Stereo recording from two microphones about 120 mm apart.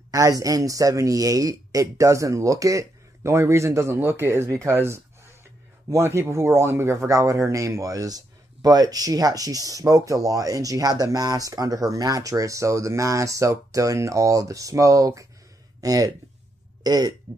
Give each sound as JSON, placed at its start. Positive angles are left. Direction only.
{"t": 0.1, "sound": "speech", "side_deg": -30}